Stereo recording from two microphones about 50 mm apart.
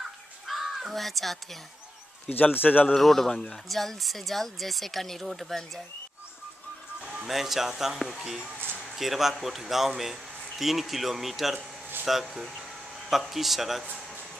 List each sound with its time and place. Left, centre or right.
0.0 s crow: centre
2.2 s a man's voice: left
2.9 s speech: centre
7.0 s speech: centre